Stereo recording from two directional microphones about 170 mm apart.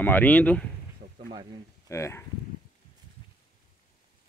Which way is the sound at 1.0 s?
50° right (ahead or behind).